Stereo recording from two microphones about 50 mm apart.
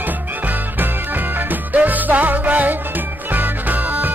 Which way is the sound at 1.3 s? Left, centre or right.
Right.